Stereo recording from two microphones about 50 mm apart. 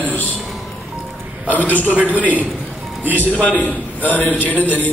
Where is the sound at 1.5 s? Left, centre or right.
Left.